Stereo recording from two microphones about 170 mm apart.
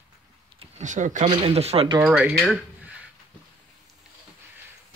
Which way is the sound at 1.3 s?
35° right (ahead or behind).